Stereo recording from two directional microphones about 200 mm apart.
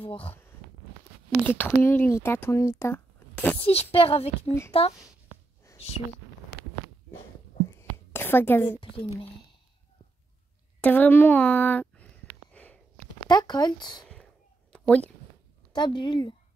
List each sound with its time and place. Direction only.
0.0 s speech: 30° left (ahead or behind)
1.4 s speech: 10° left (ahead or behind)
3.5 s speech: 25° left (ahead or behind)
5.8 s speech: 30° left (ahead or behind)
8.1 s a woman's voice: 10° left (ahead or behind)
8.8 s speech: 25° left (ahead or behind)
10.8 s speech: 10° left (ahead or behind)
12.5 s a sound: 10° left (ahead or behind)
13.3 s speech: 20° left (ahead or behind)
14.0 s a sound: 5° left (ahead or behind)
15.7 s speech: 20° left (ahead or behind)